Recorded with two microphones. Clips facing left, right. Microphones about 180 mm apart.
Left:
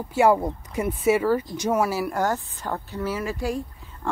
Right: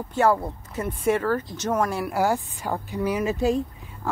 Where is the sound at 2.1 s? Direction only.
10° right (ahead or behind).